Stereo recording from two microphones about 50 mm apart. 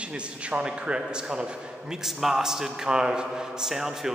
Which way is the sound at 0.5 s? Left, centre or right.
Centre.